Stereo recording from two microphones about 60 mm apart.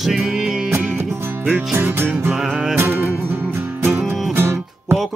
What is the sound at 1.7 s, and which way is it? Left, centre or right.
Music, right.